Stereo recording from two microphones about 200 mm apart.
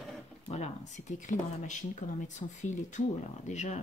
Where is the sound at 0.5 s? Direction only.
35° left (ahead or behind).